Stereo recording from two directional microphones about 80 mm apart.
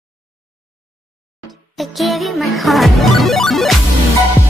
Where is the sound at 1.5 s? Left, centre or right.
Centre.